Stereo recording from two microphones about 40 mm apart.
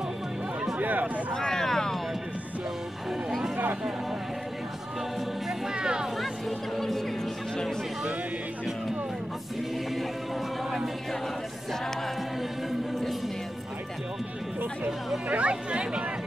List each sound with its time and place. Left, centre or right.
0.7 s speech: right
1.3 s vehicle: centre
3.3 s a sound: centre
5.8 s speech: right
15.2 s speech: right